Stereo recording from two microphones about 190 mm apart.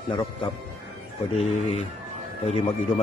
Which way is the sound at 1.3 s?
35° left (ahead or behind).